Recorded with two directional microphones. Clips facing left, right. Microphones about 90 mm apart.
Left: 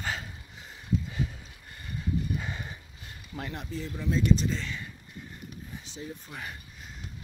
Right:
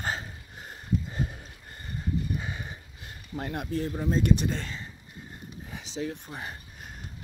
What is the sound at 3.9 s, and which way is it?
Speech, 40° right (ahead or behind).